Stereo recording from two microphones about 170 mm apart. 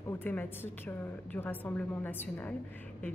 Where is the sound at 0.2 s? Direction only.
10° left (ahead or behind).